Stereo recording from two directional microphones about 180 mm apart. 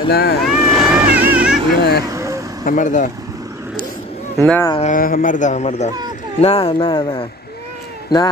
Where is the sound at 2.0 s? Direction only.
15° right (ahead or behind).